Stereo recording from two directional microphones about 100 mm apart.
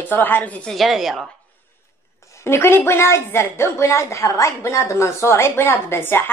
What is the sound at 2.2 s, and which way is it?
A woman's voice, 25° left (ahead or behind).